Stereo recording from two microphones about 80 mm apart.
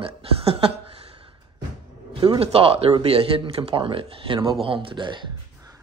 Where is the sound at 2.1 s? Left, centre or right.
Right.